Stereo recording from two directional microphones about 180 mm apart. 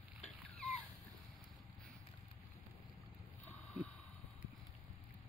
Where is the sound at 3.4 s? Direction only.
5° left (ahead or behind).